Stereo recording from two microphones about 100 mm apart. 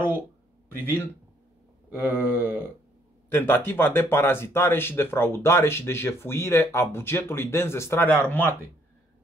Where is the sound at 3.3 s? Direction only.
20° left (ahead or behind).